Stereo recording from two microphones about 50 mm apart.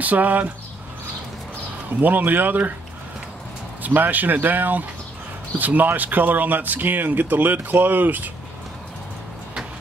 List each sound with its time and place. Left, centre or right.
0.0 s speech: right
2.0 s speech: right
3.8 s speech: right